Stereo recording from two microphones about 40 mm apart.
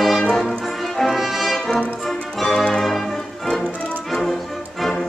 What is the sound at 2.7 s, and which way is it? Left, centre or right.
Music, centre.